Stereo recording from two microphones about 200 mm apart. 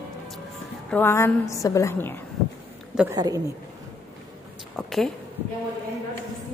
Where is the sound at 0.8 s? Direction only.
10° left (ahead or behind).